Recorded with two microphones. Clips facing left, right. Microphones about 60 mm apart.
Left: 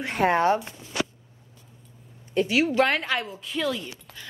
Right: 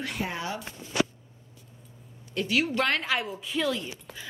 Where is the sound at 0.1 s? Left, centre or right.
Left.